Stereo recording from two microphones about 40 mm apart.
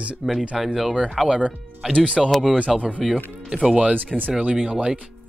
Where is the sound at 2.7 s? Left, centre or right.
Centre.